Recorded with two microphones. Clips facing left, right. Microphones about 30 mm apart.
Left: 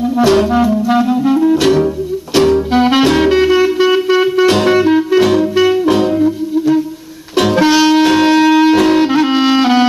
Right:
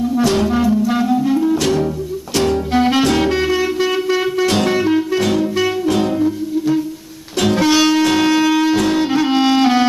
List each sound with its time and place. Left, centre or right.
0.3 s music: centre
9.3 s music: centre